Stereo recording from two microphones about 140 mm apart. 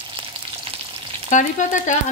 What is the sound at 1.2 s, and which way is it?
Frying, 65° left (ahead or behind).